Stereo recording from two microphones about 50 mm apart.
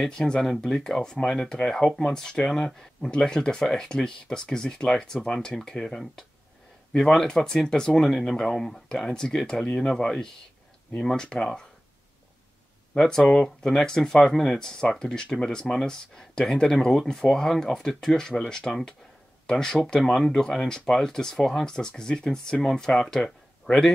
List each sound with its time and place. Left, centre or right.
0.1 s speech: centre
13.0 s speech: centre
23.2 s a sound: centre